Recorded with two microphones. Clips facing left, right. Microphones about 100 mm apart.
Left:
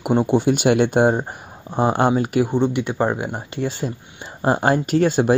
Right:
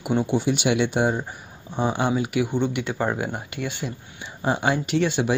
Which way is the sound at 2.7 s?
25° left (ahead or behind).